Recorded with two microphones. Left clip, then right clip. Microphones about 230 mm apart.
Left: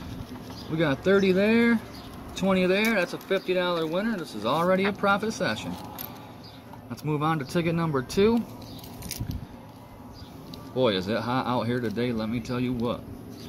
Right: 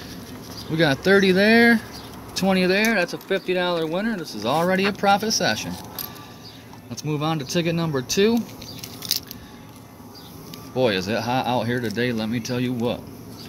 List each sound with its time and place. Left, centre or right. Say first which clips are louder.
0.7 s speech: right 5 dB; right
7.0 s speech: right 2 dB; centre
9.0 s a sound: right 13 dB; right
10.8 s speech: right 3 dB; centre